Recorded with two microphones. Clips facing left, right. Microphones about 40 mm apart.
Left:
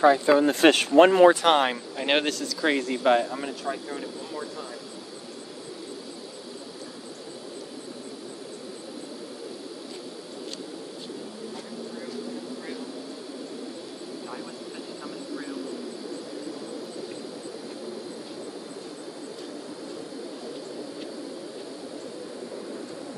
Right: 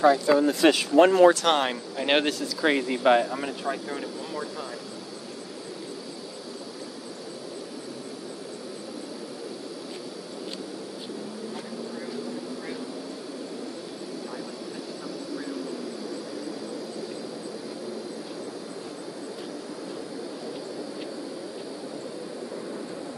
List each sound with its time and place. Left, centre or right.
0.0 s speech: left
0.5 s speech: left
1.1 s speech: left
1.5 s speech: centre